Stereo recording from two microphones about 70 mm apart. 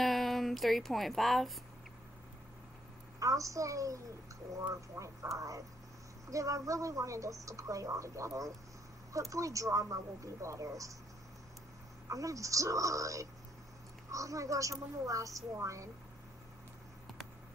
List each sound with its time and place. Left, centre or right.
0.0 s speech: centre
3.2 s speech: right
6.3 s speech: right
12.1 s speech: right